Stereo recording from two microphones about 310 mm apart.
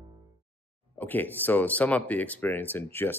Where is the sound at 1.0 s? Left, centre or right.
Centre.